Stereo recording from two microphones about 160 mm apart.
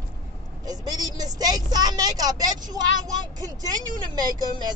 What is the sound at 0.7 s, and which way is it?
A woman's voice, 25° right (ahead or behind).